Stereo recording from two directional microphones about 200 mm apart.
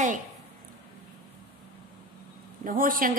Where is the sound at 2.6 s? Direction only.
45° right (ahead or behind).